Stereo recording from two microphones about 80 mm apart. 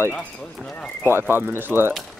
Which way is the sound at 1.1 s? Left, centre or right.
Right.